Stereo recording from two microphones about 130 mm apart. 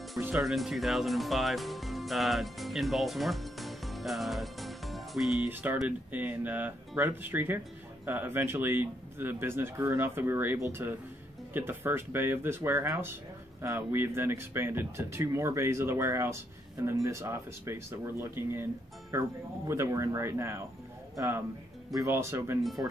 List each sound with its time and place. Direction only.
0.4 s speech: centre (ahead or behind)
5.5 s speech: 15° right (ahead or behind)
21.9 s speech: 20° right (ahead or behind)